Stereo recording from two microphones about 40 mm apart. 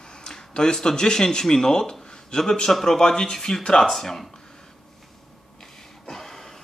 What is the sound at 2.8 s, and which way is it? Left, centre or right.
Speech, centre.